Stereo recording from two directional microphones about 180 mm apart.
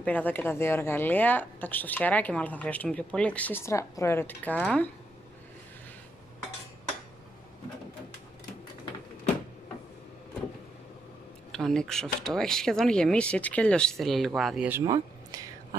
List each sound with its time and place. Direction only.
0.0 s speech: 10° left (ahead or behind)
11.5 s speech: 5° left (ahead or behind)
14.7 s speech: 15° right (ahead or behind)